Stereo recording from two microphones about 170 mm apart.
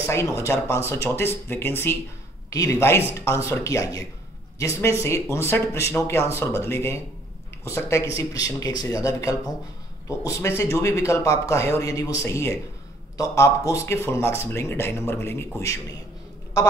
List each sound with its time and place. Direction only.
0.0 s speech: 15° left (ahead or behind)